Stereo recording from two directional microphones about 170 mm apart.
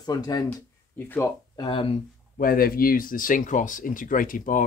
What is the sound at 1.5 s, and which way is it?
Speech, 30° left (ahead or behind).